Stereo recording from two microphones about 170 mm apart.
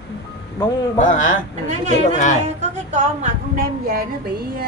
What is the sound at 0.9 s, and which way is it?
Speech, 50° left (ahead or behind).